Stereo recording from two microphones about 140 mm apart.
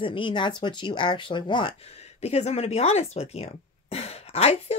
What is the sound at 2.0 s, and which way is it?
Speech, 50° left (ahead or behind).